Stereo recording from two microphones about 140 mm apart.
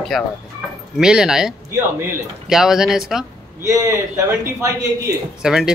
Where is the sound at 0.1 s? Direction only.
Centre (ahead or behind).